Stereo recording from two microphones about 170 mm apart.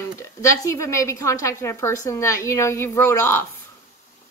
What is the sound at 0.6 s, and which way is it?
A woman's voice, 20° left (ahead or behind).